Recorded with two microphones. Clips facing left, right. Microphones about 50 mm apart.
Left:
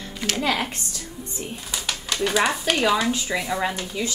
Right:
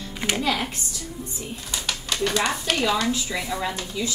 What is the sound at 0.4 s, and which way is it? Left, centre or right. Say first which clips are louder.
Speech: left 3 dB; left.